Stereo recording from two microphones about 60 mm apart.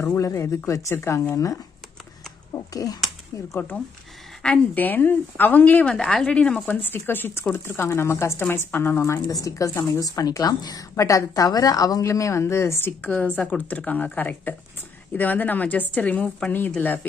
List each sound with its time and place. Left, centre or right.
0.0 s speech: left
0.9 s speech: left
1.3 s speech: left
2.5 s speech: left
3.7 s speech: left
4.7 s a woman's voice: left
5.9 s a woman's voice: centre
6.7 s a woman's voice: left
9.3 s a woman's voice: left
13.4 s speech: left